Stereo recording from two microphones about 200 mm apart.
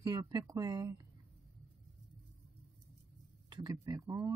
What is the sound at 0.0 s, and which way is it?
Speech, 20° right (ahead or behind).